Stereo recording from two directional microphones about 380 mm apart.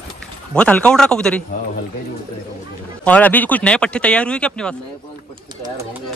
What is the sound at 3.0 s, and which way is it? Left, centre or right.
Speech, centre.